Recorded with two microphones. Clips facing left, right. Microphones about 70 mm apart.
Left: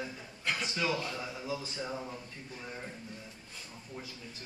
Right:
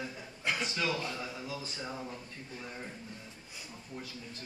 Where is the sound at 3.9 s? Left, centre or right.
Centre.